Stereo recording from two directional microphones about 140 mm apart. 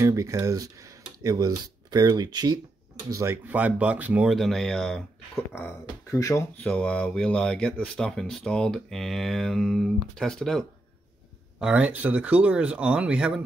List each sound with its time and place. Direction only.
0.0 s speech: 20° right (ahead or behind)
3.1 s speech: 20° right (ahead or behind); by 6.4 s 20° left (ahead or behind)
6.5 s speech: 10° left (ahead or behind)
11.6 s speech: 10° right (ahead or behind)